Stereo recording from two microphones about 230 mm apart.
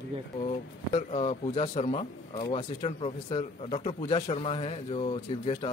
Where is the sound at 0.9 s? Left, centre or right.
Left.